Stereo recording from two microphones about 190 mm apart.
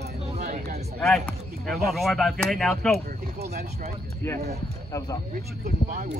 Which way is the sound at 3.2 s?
55° right (ahead or behind).